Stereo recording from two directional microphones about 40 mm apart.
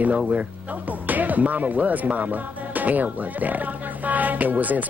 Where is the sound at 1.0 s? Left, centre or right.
Right.